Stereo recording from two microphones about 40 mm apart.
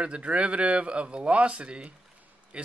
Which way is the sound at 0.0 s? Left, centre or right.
Right.